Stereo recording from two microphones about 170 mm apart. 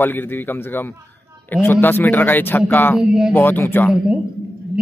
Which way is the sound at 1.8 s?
10° left (ahead or behind).